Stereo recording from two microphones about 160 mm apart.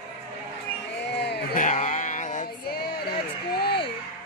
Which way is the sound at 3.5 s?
90° left.